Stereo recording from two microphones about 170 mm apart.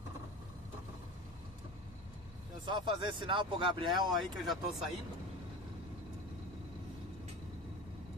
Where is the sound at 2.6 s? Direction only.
25° right (ahead or behind).